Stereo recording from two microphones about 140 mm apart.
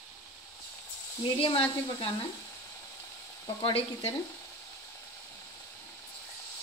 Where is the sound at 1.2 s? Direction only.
35° left (ahead or behind).